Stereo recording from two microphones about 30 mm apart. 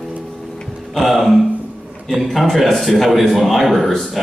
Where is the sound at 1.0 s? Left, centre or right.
Centre.